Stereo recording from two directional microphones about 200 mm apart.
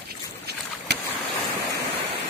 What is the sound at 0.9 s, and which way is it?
Boat, 55° right (ahead or behind).